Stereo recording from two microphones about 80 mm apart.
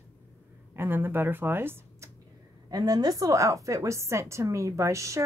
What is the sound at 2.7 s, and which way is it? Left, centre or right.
A woman's voice, right.